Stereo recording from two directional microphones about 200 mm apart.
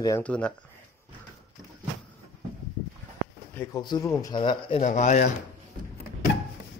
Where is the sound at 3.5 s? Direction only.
20° left (ahead or behind); by 5.2 s 35° left (ahead or behind).